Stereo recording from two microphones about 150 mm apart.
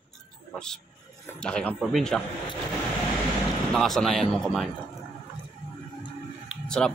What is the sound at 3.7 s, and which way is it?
Speech, 5° left (ahead or behind).